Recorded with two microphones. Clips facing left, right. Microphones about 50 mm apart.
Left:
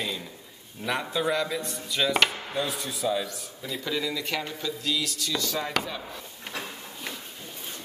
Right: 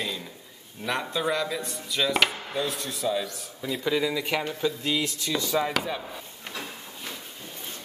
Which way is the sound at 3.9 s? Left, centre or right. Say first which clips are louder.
Right 4 dB; centre.